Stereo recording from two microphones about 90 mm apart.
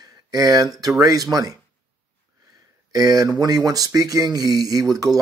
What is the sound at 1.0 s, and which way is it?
Speech, 45° right (ahead or behind).